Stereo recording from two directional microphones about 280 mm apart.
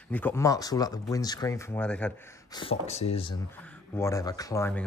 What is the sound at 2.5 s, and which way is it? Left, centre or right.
Speech, left.